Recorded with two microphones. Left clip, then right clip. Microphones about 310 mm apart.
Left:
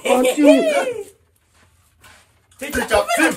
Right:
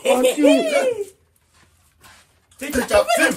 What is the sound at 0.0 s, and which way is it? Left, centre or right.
Speech, centre.